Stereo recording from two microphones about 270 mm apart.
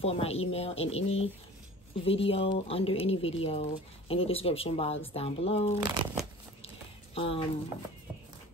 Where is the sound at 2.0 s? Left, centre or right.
Left.